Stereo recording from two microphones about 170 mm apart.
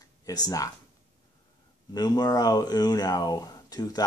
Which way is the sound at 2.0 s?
25° left (ahead or behind).